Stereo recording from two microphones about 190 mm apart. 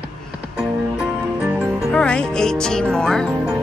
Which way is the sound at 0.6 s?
5° right (ahead or behind).